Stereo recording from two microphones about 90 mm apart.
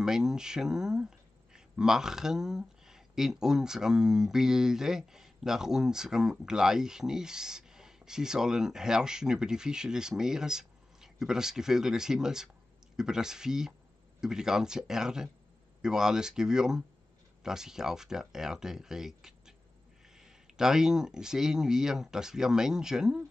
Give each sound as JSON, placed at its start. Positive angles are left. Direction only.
{"t": 0.0, "sound": "speech", "side_deg": -5}